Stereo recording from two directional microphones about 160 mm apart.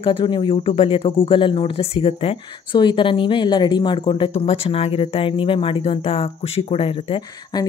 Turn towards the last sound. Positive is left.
turn(degrees=35)  # may be behind; listen again after turning